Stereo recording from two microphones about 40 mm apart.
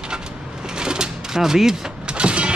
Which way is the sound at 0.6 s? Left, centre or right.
Centre.